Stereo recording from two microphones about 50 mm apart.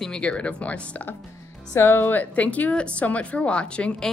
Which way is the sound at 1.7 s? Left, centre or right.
Left.